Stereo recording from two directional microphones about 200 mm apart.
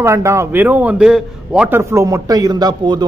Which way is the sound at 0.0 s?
15° right (ahead or behind).